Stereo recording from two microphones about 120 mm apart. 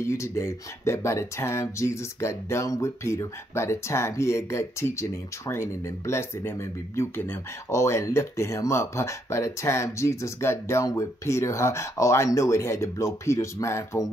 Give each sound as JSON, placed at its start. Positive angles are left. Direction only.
{"t": 0.0, "sound": "speech", "side_deg": 20}